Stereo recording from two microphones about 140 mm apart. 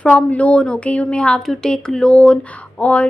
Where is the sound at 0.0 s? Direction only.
10° left (ahead or behind).